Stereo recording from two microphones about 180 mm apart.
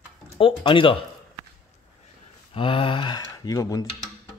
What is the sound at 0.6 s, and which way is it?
Speech, 30° left (ahead or behind).